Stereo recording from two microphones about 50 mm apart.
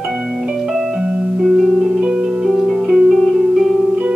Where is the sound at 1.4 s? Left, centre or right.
Centre.